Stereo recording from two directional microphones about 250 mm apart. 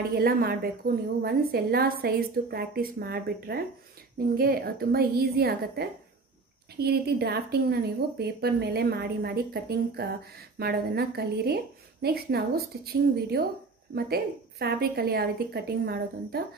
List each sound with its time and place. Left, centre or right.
0.1 s a woman's voice: right